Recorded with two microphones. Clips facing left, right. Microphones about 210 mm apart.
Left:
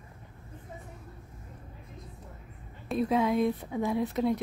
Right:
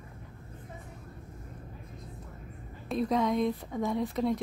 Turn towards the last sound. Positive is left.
turn(degrees=5)  # may be behind; listen again after turning